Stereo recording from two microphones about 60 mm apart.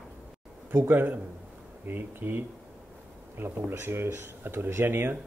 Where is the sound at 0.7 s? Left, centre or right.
Right.